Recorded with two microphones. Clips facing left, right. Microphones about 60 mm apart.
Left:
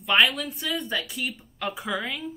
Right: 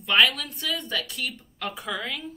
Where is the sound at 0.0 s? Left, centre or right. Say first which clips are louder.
Even; centre.